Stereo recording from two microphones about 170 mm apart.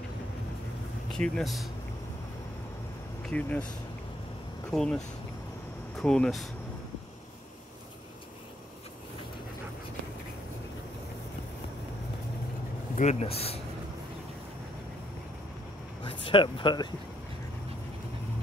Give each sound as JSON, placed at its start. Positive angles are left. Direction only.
{"t": 1.1, "sound": "speech", "side_deg": 5}
{"t": 3.3, "sound": "speech", "side_deg": 5}
{"t": 4.6, "sound": "speech", "side_deg": 5}
{"t": 12.9, "sound": "speech", "side_deg": 40}
{"t": 16.0, "sound": "speech", "side_deg": 30}